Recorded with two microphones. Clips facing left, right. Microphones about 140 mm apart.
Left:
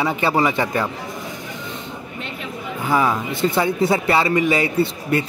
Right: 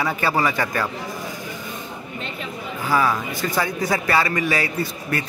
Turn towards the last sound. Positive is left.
turn(degrees=25)  # may be behind; listen again after turning